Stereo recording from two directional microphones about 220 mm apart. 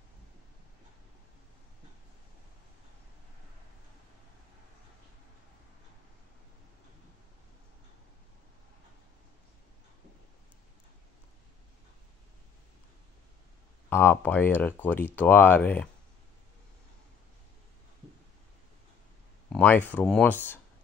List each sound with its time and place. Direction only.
13.8 s speech: 10° left (ahead or behind)
19.5 s speech: 5° left (ahead or behind)